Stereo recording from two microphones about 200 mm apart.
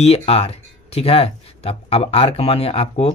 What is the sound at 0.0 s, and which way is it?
Speech, 30° left (ahead or behind).